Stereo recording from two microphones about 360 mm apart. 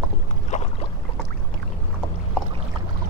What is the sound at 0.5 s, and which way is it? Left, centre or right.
Boat, centre.